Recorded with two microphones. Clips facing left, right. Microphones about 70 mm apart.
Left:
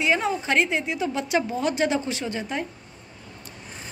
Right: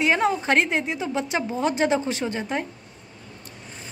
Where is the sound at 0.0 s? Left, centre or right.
Right.